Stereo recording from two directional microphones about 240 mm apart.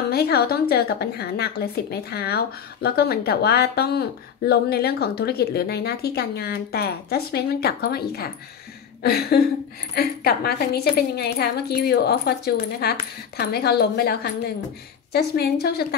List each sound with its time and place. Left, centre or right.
0.1 s a woman's voice: left